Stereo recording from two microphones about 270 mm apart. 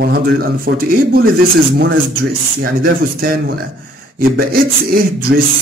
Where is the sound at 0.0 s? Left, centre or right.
Right.